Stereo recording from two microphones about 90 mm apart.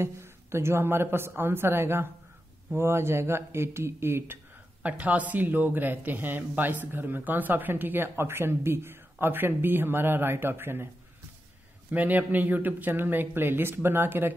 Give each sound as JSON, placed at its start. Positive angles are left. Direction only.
{"t": 0.0, "sound": "speech", "side_deg": -30}
{"t": 4.8, "sound": "speech", "side_deg": -15}
{"t": 11.9, "sound": "speech", "side_deg": -20}